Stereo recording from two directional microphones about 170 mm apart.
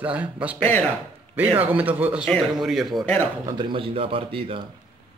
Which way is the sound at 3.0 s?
10° left (ahead or behind).